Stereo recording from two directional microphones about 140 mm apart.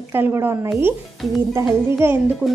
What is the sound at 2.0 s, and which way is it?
Speech, 15° right (ahead or behind).